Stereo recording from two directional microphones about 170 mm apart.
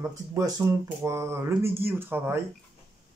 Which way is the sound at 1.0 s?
15° right (ahead or behind).